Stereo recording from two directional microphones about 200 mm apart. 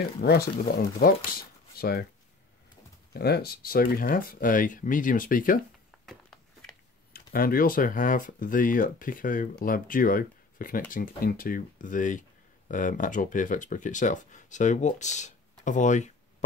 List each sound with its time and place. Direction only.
0.2 s speech: 55° left (ahead or behind)
3.1 s speech: 55° left (ahead or behind)
7.1 s speech: 45° left (ahead or behind)